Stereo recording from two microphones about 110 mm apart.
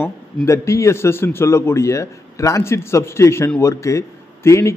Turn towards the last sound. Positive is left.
turn(degrees=25)  # may be behind; listen again after turning